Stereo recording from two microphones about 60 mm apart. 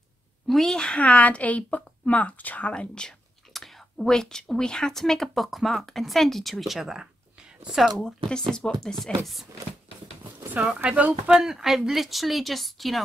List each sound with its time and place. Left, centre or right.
0.5 s speech: centre
0.9 s a woman's voice: left
2.7 s speech: centre
3.5 s a woman's voice: centre
8.0 s speech: centre
10.6 s speech: centre
11.2 s a woman's voice: centre